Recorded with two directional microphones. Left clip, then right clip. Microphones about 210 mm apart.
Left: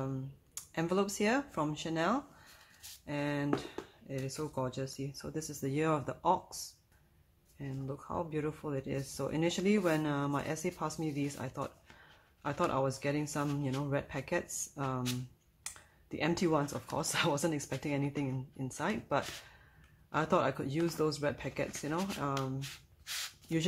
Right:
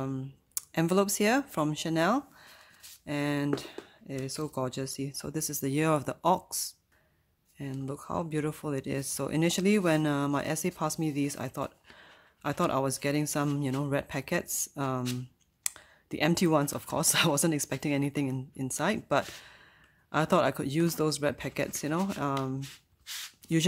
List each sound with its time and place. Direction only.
0.0 s speech: 50° right (ahead or behind)